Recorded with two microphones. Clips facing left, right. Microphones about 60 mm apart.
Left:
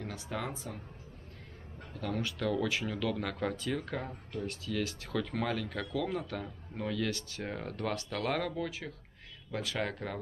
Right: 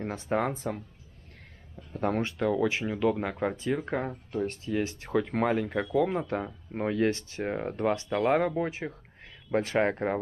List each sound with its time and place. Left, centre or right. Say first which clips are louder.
0.0 s speech: right 9 dB; right
2.0 s speech: right 7 dB; right
2.3 s speech: right 5 dB; right